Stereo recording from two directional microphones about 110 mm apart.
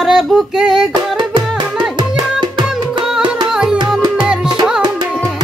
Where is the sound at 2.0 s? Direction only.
40° right (ahead or behind).